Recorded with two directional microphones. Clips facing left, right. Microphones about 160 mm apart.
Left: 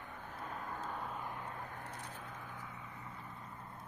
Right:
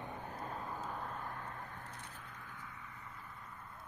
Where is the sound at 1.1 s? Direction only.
15° left (ahead or behind).